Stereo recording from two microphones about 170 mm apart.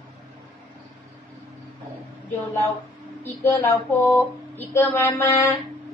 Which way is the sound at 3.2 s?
15° left (ahead or behind).